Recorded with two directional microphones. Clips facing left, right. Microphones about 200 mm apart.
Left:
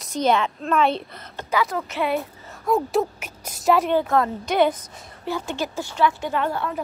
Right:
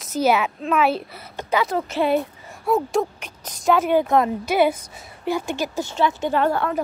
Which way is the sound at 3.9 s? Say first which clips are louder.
Right 2 dB; 20° right (ahead or behind).